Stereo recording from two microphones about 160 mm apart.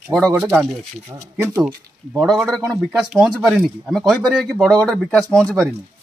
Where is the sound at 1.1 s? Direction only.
20° right (ahead or behind).